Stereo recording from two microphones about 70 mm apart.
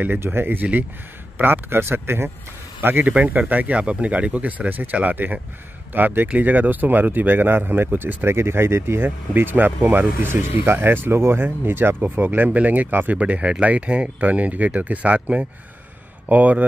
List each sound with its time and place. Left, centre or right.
0.0 s speech: right
3.1 s speech: right
10.1 s speech: right